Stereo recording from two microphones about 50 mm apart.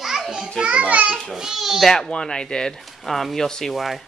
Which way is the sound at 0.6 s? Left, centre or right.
Centre.